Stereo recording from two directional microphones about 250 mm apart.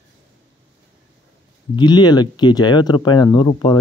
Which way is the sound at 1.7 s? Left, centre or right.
Centre.